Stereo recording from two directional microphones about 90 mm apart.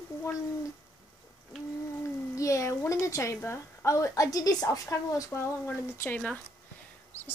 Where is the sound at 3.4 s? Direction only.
30° left (ahead or behind).